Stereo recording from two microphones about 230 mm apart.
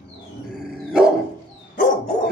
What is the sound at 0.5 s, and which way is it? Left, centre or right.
Dog, centre.